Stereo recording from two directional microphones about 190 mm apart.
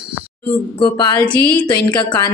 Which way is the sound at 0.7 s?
25° left (ahead or behind).